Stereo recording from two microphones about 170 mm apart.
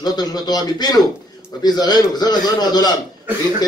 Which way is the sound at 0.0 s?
25° left (ahead or behind).